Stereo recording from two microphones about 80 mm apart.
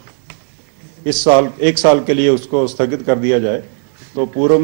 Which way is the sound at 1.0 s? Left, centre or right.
Centre.